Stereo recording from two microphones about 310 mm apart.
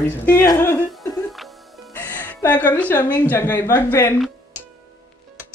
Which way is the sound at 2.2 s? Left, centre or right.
Centre.